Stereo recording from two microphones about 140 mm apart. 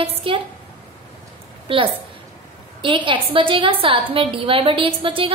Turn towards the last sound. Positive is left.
turn(degrees=-40)  # may be behind; listen again after turning